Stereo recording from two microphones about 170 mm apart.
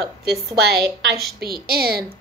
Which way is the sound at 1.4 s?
65° right (ahead or behind).